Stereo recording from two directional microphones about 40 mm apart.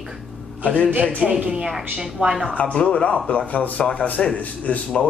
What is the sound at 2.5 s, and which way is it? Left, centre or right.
Speech, left.